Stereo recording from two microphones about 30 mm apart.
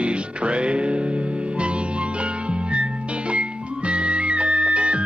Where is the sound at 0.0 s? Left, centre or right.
Right.